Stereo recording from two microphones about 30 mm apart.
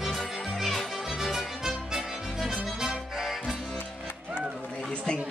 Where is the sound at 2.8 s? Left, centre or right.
Centre.